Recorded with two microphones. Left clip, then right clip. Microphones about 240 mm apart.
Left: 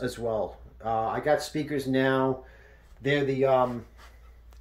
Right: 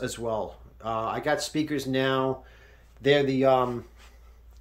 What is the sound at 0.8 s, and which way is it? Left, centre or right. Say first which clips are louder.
Speech: left 1 dB; centre.